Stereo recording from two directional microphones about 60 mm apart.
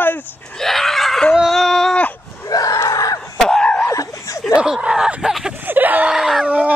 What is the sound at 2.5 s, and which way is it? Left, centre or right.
Screaming, left.